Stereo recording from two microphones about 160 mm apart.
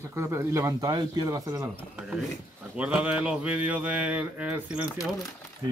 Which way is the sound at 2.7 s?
5° right (ahead or behind).